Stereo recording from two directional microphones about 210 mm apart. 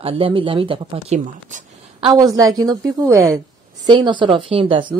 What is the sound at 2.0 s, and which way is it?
A woman's voice, 15° right (ahead or behind).